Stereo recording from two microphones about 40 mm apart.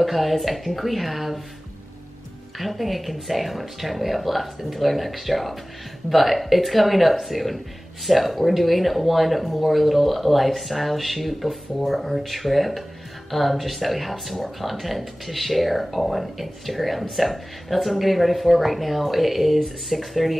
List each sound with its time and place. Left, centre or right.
0.0 s speech: centre
2.6 s speech: centre